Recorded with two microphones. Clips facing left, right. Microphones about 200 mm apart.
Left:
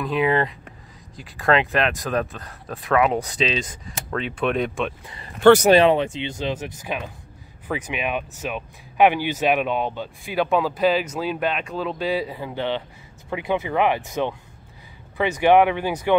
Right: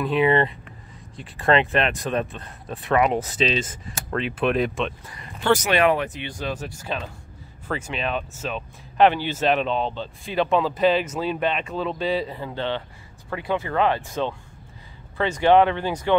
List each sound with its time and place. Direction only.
0.0 s speech: centre (ahead or behind)
5.0 s speech: 25° left (ahead or behind)
5.4 s speech: 65° left (ahead or behind)
5.7 s speech: 25° left (ahead or behind)